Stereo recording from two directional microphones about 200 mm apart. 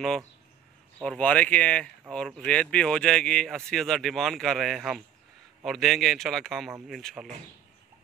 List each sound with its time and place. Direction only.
1.0 s speech: 5° left (ahead or behind)